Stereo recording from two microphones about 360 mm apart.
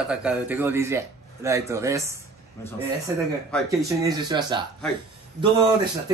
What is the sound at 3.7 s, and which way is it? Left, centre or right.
A man's voice, centre.